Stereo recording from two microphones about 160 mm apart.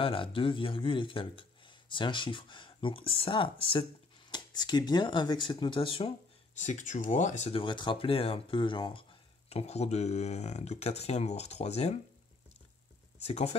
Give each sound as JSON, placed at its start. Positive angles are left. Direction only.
{"t": 0.0, "sound": "speech", "side_deg": 35}
{"t": 6.6, "sound": "speech", "side_deg": 50}
{"t": 13.2, "sound": "speech", "side_deg": 40}